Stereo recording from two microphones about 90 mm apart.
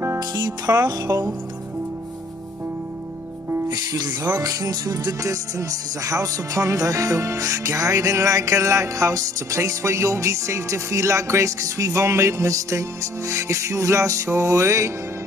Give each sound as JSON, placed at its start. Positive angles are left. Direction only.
{"t": 0.7, "sound": "music", "side_deg": -35}
{"t": 3.5, "sound": "music", "side_deg": -40}